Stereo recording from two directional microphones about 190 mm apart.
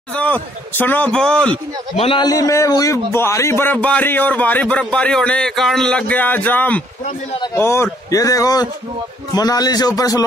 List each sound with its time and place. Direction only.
0.1 s a man's voice: 10° left (ahead or behind)
2.0 s a man's voice: 25° left (ahead or behind)